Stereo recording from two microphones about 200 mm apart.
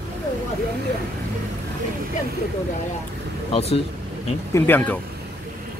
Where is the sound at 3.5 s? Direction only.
30° left (ahead or behind).